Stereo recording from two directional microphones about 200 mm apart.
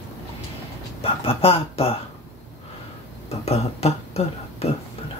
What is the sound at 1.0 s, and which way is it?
Speech, 30° left (ahead or behind).